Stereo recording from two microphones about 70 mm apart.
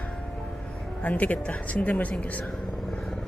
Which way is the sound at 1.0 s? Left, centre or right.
Left.